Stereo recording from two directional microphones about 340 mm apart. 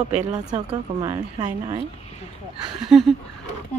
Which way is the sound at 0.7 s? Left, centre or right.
Centre.